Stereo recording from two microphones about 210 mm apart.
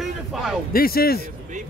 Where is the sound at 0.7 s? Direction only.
45° left (ahead or behind).